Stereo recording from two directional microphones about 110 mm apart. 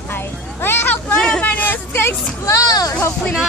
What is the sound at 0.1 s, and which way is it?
Vehicle, 20° left (ahead or behind).